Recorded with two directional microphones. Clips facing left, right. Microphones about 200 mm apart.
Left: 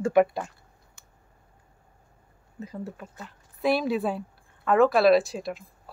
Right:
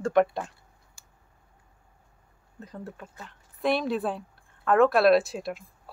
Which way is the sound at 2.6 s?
5° left (ahead or behind).